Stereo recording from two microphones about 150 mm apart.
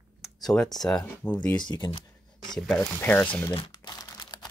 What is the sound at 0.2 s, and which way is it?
Speech, 5° left (ahead or behind).